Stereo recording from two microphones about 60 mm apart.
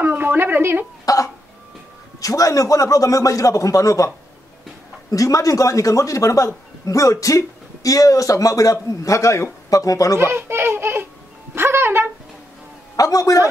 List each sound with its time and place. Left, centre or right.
0.0 s a woman's voice: right
1.0 s a man's voice: left
5.1 s a man's voice: left
9.0 s a man's voice: left
10.1 s a child's voice: right
11.5 s a sound: right
12.9 s a man's voice: left